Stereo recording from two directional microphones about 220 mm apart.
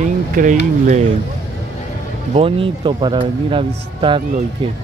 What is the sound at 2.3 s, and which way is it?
Speech, 25° right (ahead or behind).